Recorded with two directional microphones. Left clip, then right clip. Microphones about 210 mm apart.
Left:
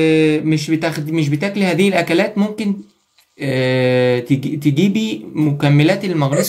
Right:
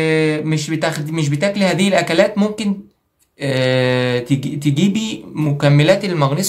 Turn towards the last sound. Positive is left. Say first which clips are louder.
# left 1 dB
turn(degrees=-10)  # may be behind; listen again after turning